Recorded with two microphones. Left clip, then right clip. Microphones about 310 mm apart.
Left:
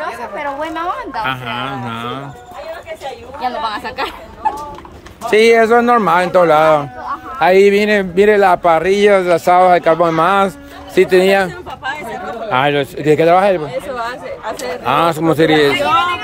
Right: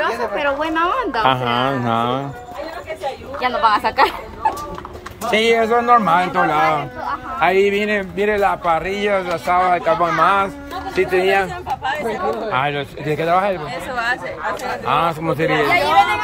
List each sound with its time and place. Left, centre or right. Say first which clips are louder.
0.0 s a woman's voice: right 3 dB; centre
3.3 s a woman's voice: right 4 dB; centre
5.3 s a man's voice: left 6 dB; centre
12.4 s speech: left 6 dB; left
14.6 s speech: left 5 dB; left